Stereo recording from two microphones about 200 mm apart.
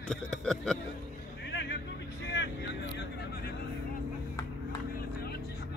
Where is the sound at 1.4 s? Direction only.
60° left (ahead or behind).